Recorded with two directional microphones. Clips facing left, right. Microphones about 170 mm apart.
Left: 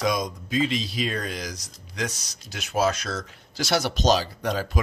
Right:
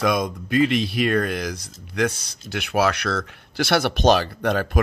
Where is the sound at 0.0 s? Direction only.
60° right (ahead or behind).